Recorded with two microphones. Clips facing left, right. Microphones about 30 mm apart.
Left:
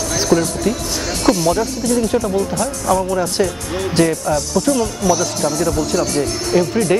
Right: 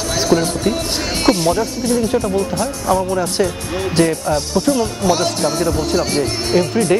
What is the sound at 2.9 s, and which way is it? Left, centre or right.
Speech, centre.